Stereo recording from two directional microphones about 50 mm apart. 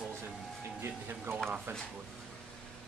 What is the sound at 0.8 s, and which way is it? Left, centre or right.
Speech, right.